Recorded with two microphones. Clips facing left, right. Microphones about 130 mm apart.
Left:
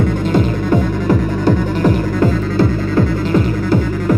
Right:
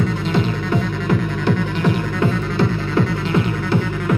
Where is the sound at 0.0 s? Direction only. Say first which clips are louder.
Left 5 dB; 45° left (ahead or behind).